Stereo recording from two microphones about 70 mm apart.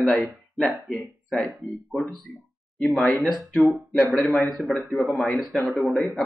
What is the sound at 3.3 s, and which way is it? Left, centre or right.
Speech, centre.